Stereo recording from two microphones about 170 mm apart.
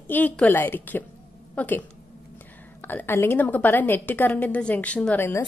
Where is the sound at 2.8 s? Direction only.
10° left (ahead or behind).